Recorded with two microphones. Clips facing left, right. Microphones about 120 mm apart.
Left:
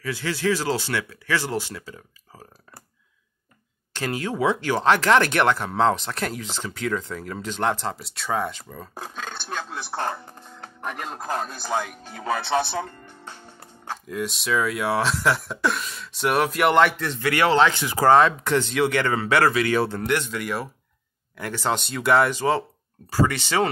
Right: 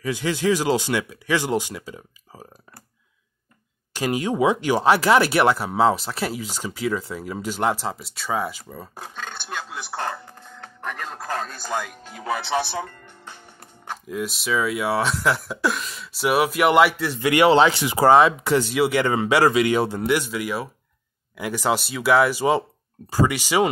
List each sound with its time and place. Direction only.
0.0 s speech: 20° right (ahead or behind)
3.9 s speech: 15° right (ahead or behind)
10.8 s speech: 15° left (ahead or behind)
14.0 s speech: centre (ahead or behind)
17.2 s speech: 15° right (ahead or behind)
23.0 s speech: 15° right (ahead or behind)